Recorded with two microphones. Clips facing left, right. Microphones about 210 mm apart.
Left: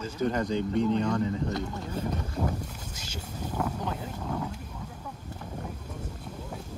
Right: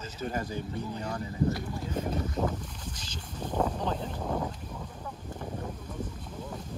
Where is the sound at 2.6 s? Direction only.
10° left (ahead or behind).